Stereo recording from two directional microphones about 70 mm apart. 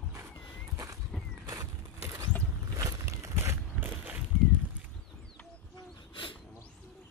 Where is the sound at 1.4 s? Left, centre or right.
Right.